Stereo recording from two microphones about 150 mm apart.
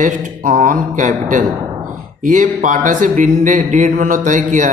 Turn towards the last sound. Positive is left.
turn(degrees=-55)  # may be behind; listen again after turning